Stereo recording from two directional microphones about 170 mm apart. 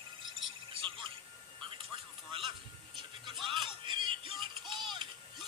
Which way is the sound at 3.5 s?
30° right (ahead or behind).